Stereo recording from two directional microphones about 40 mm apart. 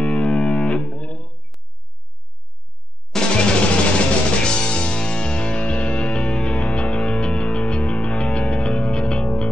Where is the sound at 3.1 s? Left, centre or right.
Centre.